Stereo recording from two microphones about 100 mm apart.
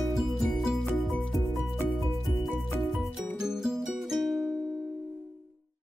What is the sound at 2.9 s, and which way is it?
Music, centre (ahead or behind).